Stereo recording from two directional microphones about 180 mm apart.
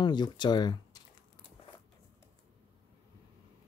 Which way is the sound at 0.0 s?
25° left (ahead or behind).